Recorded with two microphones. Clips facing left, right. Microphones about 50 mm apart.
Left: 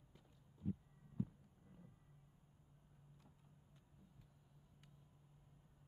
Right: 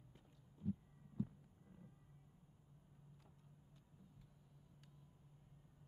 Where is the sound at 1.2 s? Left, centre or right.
Centre.